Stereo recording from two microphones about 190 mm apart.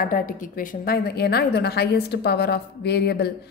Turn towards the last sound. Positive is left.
turn(degrees=60)  # may be behind; listen again after turning